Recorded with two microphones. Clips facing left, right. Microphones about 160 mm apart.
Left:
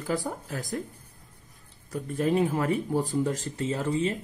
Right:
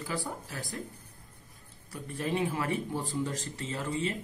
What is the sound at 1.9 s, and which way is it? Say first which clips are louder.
Speech: left 7 dB; 45° left (ahead or behind).